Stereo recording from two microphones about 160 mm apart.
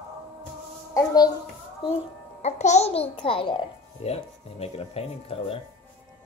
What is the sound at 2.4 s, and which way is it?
A child's voice, 45° left (ahead or behind).